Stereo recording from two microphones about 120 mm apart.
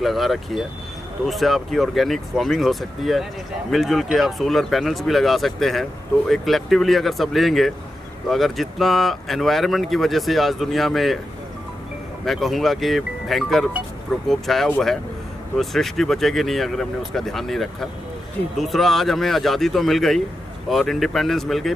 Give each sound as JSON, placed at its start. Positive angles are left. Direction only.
{"t": 0.0, "sound": "speech", "side_deg": 0}
{"t": 12.3, "sound": "speech", "side_deg": 0}